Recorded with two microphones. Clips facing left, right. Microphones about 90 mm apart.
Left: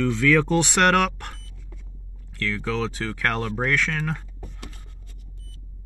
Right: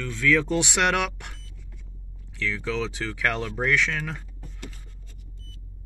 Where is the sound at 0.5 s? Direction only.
45° left (ahead or behind).